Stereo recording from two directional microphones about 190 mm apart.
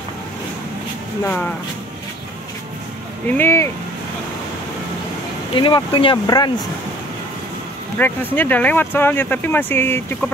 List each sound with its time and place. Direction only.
1.2 s speech: 10° left (ahead or behind)
3.3 s speech: 10° left (ahead or behind)
5.6 s speech: 25° left (ahead or behind)
8.0 s speech: 10° left (ahead or behind)